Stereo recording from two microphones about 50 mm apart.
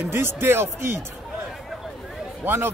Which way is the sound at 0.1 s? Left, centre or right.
Right.